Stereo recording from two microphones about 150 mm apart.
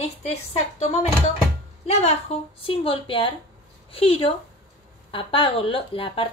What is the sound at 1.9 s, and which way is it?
Speech, 45° left (ahead or behind).